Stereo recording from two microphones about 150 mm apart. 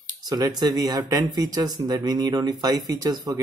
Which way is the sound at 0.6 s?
25° right (ahead or behind).